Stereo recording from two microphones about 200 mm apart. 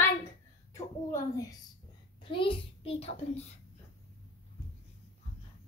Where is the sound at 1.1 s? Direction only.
15° left (ahead or behind).